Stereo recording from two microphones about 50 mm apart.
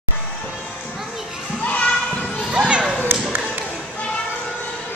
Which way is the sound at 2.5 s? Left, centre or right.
Centre.